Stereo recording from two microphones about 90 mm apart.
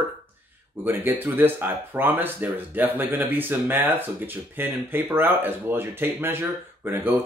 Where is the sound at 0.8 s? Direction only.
25° right (ahead or behind).